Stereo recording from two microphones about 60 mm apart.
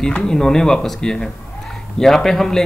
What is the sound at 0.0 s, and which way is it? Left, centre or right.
Speech, centre.